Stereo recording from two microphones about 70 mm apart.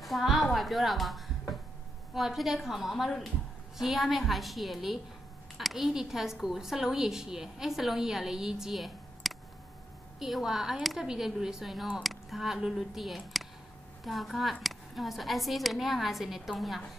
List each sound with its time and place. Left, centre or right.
0.0 s music: centre
2.1 s a woman's voice: centre